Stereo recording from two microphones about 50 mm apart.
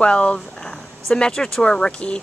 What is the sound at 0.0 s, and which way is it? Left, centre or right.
A woman's voice, left.